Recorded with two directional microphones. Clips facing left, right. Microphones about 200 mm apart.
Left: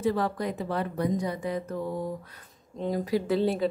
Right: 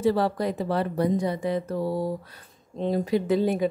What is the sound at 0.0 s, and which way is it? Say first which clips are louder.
Speech: right 4 dB; 35° right (ahead or behind).